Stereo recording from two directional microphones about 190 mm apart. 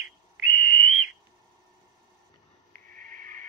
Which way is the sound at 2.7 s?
45° right (ahead or behind).